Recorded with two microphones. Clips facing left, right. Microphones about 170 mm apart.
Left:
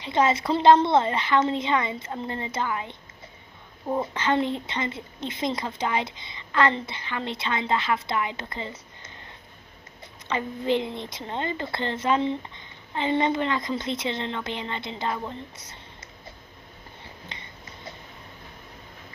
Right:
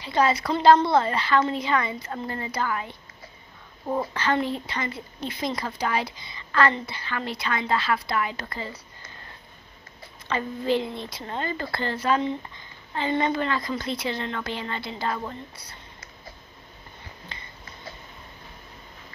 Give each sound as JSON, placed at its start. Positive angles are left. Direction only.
{"t": 0.0, "sound": "a woman's voice", "side_deg": 20}
{"t": 4.0, "sound": "a woman's voice", "side_deg": 20}
{"t": 10.2, "sound": "a woman's voice", "side_deg": 20}
{"t": 17.0, "sound": "a sound", "side_deg": 25}